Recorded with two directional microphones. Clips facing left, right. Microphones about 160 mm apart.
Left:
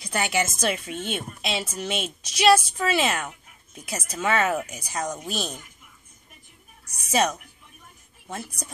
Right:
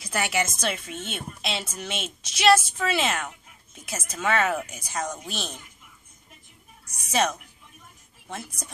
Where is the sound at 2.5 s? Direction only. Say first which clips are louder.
Left 1 dB; 10° left (ahead or behind).